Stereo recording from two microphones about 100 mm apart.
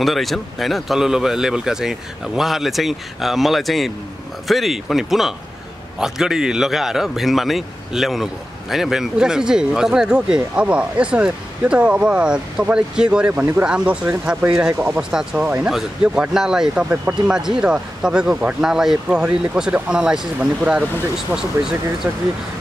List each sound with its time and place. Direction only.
0.0 s a man's voice: centre (ahead or behind)
14.7 s speech: 25° right (ahead or behind)
15.0 s a man's voice: 5° right (ahead or behind)